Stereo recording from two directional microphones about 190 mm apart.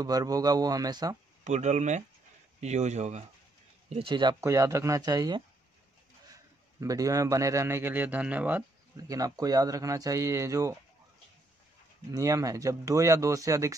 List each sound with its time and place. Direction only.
0.0 s speech: 20° right (ahead or behind)
1.4 s speech: 40° right (ahead or behind)
3.9 s a man's voice: 25° right (ahead or behind)
12.1 s a man's voice: 15° right (ahead or behind)